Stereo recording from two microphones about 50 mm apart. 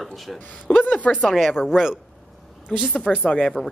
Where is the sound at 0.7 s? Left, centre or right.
Left.